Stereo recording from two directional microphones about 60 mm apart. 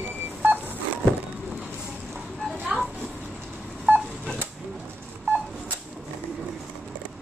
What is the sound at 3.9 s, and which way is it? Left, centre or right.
Telephone dialing, right.